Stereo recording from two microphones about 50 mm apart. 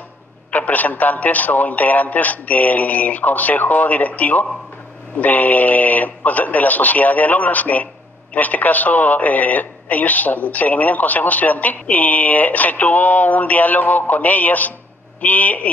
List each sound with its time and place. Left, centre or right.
0.5 s speech: left